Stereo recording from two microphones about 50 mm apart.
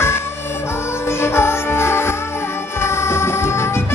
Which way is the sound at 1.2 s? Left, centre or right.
Left.